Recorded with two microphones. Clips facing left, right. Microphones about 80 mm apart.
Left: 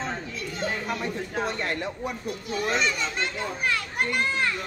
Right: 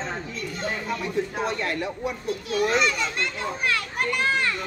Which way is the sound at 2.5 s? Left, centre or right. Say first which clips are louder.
Right 4 dB; centre.